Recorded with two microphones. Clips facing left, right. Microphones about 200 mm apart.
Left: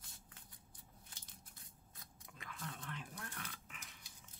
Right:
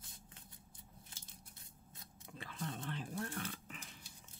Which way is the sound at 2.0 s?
30° right (ahead or behind).